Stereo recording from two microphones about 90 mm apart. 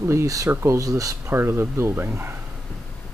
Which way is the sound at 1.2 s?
25° right (ahead or behind).